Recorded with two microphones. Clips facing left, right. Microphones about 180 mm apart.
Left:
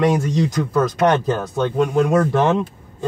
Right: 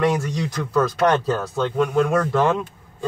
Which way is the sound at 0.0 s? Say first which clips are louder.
Left 4 dB; 20° left (ahead or behind).